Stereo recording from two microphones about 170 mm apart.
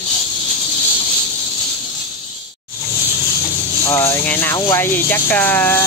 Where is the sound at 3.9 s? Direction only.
15° left (ahead or behind).